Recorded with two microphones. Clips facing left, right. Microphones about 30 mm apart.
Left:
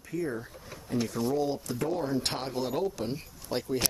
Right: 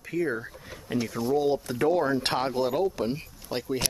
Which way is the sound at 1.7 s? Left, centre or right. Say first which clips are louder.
Right 8 dB; right.